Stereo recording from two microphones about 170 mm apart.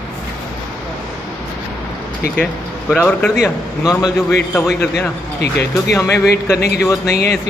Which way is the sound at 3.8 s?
20° left (ahead or behind).